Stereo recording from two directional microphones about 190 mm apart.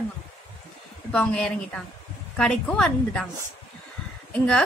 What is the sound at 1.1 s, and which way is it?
A woman's voice, 5° left (ahead or behind).